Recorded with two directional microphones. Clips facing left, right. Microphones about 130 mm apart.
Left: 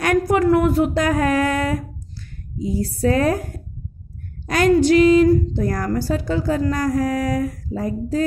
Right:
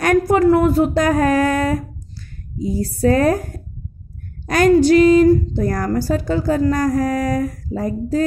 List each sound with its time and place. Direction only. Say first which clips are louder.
0.0 s a woman's voice: right 3 dB; 35° right (ahead or behind)
4.5 s a woman's voice: right 3 dB; 45° right (ahead or behind)